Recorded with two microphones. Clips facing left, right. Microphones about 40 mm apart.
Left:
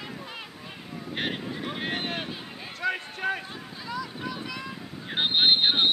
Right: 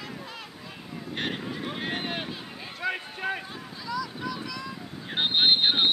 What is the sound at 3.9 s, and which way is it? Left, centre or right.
Vehicle, left.